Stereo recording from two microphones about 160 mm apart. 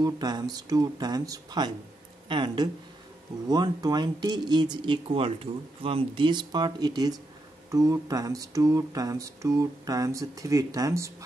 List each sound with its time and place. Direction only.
0.0 s speech: 25° right (ahead or behind)